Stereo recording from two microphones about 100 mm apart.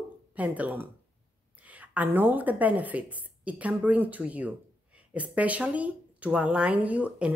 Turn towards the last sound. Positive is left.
turn(degrees=-15)  # may be behind; listen again after turning